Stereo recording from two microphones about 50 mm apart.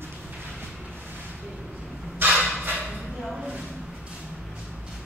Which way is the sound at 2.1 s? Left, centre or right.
Right.